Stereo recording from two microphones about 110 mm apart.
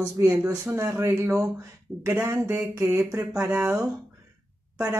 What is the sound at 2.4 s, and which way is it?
Speech, 25° right (ahead or behind).